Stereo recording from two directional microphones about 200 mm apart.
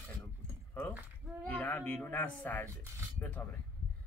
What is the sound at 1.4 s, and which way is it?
Speech, 5° left (ahead or behind).